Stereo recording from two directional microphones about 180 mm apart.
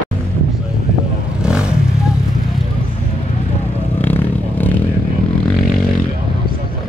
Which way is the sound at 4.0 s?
10° left (ahead or behind).